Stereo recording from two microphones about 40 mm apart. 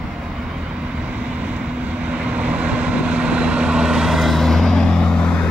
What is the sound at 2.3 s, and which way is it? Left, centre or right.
Vehicle, right.